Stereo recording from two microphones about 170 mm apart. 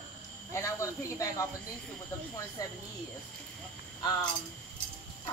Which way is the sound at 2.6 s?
20° left (ahead or behind).